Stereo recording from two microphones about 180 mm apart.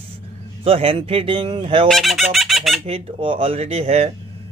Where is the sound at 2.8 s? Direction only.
30° right (ahead or behind).